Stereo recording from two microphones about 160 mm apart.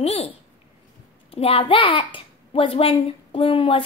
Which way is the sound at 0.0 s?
40° left (ahead or behind).